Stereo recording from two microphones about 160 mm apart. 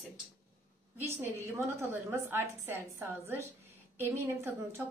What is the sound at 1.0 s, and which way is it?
A woman's voice, 15° right (ahead or behind).